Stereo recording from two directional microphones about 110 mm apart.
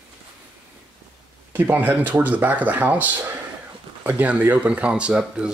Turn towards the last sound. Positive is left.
turn(degrees=-10)  # may be behind; listen again after turning